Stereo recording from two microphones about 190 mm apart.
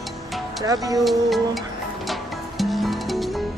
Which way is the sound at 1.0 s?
Centre (ahead or behind).